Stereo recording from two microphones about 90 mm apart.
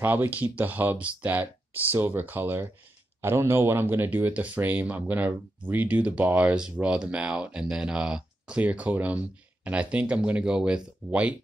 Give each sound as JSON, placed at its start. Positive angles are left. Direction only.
{"t": 0.0, "sound": "speech", "side_deg": -20}